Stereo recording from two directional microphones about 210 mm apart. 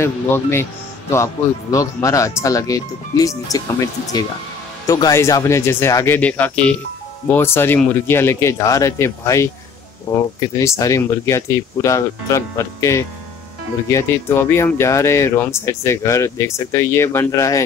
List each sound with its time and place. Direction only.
0.0 s speech: 10° left (ahead or behind)